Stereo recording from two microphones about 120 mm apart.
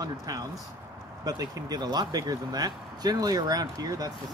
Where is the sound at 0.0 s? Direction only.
30° right (ahead or behind).